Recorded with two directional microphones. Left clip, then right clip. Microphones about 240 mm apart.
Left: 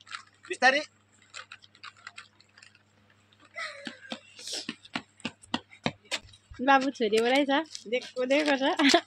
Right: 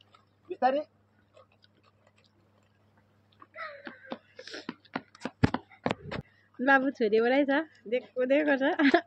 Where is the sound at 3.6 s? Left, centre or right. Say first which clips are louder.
Left 3 dB; left.